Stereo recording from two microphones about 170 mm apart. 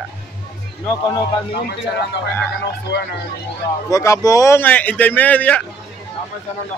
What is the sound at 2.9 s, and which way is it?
Speech, 75° left (ahead or behind).